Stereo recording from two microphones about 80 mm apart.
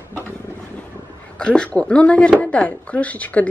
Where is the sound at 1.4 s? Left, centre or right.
Centre.